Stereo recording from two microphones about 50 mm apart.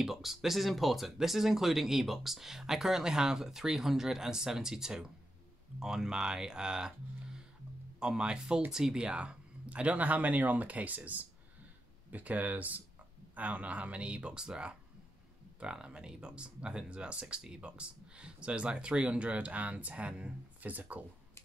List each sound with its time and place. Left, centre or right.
0.0 s speech: centre
8.0 s speech: centre; by 21.0 s right